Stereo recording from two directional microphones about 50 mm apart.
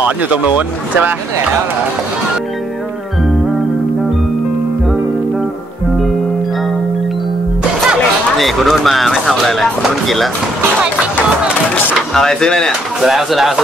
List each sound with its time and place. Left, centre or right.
0.0 s speech: right
8.4 s speech: centre
12.1 s speech: centre
13.0 s speech: centre